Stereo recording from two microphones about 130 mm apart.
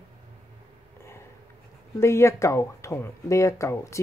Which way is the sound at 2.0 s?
20° left (ahead or behind).